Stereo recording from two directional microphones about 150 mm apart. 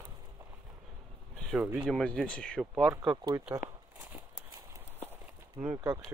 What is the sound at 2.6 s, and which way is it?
Speech, 5° right (ahead or behind).